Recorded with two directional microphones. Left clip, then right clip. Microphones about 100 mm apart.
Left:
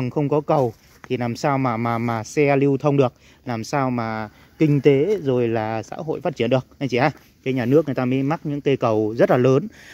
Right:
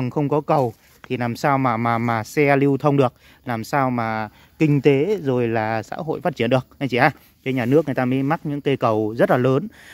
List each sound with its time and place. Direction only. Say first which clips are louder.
0.0 s speech: even; 30° right (ahead or behind)
3.4 s speech: right 2 dB; 20° right (ahead or behind)
9.2 s speech: left 2 dB; 5° right (ahead or behind)